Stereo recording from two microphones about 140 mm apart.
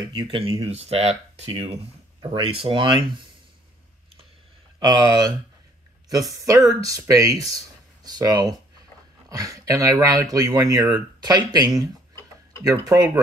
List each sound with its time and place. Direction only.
0.1 s speech: 35° right (ahead or behind)
4.7 s speech: 30° right (ahead or behind)